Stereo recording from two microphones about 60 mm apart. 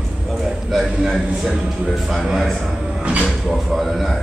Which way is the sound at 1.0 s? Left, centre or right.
Centre.